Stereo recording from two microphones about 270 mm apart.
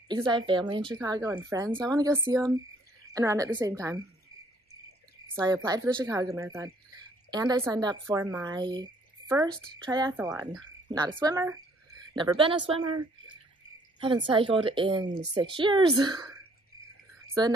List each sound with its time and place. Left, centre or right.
0.3 s speech: centre
5.3 s speech: centre
13.9 s a woman's voice: centre